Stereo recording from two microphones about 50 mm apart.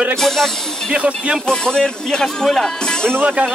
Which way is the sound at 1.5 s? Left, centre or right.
Centre.